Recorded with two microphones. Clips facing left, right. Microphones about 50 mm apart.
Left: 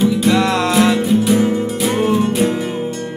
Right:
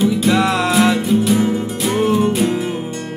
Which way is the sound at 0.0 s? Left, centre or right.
Centre.